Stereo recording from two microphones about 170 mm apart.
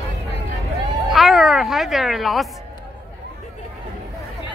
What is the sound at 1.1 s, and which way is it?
Music, centre (ahead or behind).